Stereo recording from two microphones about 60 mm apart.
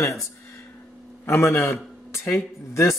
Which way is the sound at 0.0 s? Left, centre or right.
Left.